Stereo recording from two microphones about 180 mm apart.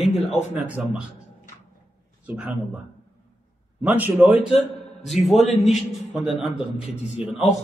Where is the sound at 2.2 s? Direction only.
5° right (ahead or behind).